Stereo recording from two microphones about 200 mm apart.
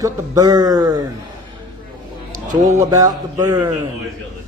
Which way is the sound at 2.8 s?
20° right (ahead or behind).